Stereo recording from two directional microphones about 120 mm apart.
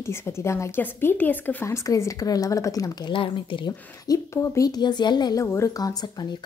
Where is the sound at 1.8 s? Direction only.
30° left (ahead or behind).